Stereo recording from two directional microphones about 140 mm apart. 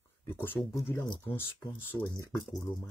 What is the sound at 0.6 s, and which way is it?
Speech, 20° left (ahead or behind).